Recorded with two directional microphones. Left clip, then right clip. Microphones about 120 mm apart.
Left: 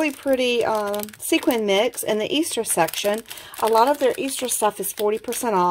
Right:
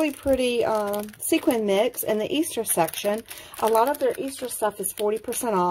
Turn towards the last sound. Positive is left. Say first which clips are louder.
# left 3 dB
turn(degrees=10)  # may be behind; listen again after turning